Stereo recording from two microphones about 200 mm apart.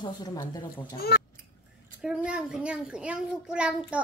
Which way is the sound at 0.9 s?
50° left (ahead or behind).